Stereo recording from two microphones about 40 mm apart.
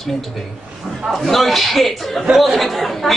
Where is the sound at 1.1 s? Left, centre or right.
Centre.